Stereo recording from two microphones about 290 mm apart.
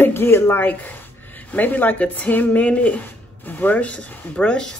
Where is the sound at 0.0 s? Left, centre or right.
Centre.